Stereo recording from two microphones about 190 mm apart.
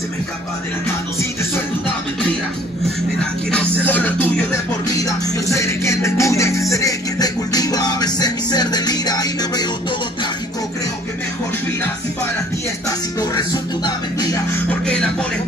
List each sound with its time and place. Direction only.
3.8 s music: 10° left (ahead or behind)
13.2 s music: 20° left (ahead or behind)